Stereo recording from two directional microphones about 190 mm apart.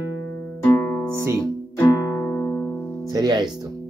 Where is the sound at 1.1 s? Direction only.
15° right (ahead or behind).